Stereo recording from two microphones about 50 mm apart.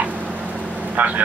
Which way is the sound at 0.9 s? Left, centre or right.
Right.